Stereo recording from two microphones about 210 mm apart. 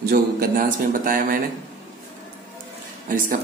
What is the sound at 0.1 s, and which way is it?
Speech, 45° right (ahead or behind).